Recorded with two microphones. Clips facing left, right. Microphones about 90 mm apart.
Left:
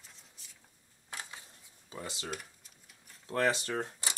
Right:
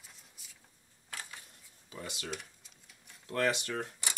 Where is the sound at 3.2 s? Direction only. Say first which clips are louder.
Left 1 dB; 25° left (ahead or behind).